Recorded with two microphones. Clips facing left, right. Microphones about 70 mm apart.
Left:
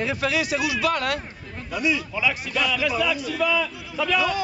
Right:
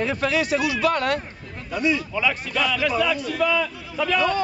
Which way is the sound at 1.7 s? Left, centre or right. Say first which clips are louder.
Right 2 dB; right.